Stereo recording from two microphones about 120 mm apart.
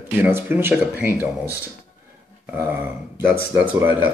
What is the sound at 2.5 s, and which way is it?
Speech, 15° right (ahead or behind).